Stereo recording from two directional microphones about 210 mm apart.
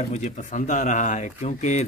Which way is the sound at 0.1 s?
35° left (ahead or behind).